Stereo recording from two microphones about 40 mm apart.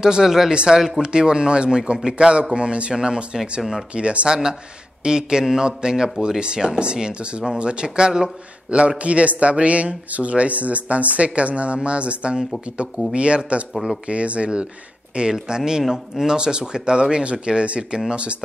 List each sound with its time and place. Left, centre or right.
0.0 s speech: centre
5.0 s speech: centre
8.6 s a man's voice: right